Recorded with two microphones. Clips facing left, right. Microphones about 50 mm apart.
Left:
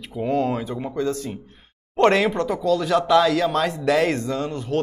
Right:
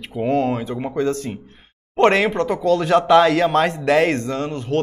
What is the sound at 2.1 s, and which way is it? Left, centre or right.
Speech, right.